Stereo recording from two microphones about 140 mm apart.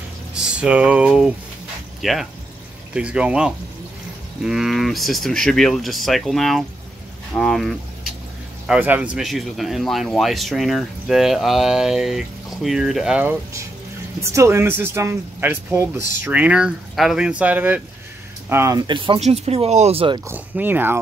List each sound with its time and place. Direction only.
0.3 s speech: 5° right (ahead or behind)
8.6 s speech: 10° right (ahead or behind)
18.8 s speech: 35° right (ahead or behind)
19.1 s speech: 50° right (ahead or behind)
20.2 s speech: 10° right (ahead or behind)